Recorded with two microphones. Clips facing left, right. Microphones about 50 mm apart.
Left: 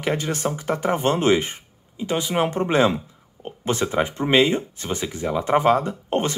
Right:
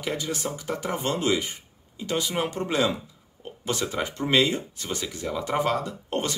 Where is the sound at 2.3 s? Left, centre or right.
Left.